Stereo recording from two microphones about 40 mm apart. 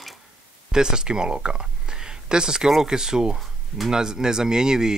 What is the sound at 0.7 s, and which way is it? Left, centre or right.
Speech, centre.